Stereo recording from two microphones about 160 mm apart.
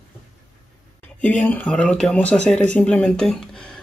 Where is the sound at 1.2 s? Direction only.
10° left (ahead or behind).